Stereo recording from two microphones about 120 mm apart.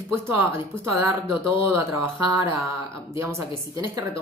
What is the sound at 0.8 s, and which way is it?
Speech, 20° right (ahead or behind).